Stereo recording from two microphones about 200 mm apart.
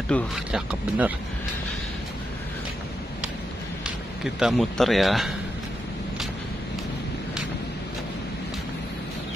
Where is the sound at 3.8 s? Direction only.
5° right (ahead or behind).